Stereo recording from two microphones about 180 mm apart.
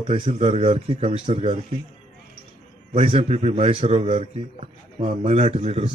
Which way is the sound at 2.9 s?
35° right (ahead or behind).